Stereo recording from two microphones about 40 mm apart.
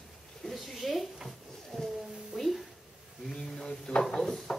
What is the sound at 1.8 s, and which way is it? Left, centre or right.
Music, centre.